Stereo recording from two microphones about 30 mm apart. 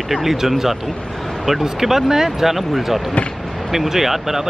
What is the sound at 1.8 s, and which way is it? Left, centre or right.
Speech, centre.